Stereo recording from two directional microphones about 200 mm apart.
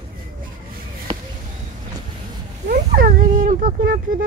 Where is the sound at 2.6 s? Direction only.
45° right (ahead or behind).